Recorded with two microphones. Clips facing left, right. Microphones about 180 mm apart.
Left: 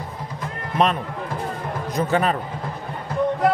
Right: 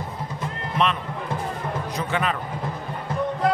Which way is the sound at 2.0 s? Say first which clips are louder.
Left 6 dB; 40° left (ahead or behind).